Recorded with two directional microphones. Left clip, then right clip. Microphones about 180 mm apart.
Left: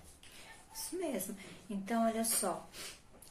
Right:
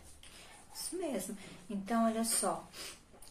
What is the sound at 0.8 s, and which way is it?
A woman's voice, centre (ahead or behind).